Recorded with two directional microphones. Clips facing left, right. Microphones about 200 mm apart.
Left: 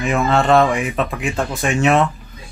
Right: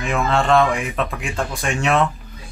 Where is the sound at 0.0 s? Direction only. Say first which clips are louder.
Left 3 dB; centre (ahead or behind).